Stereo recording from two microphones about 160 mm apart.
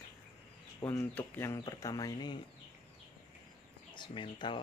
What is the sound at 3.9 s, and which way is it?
Speech, 30° left (ahead or behind).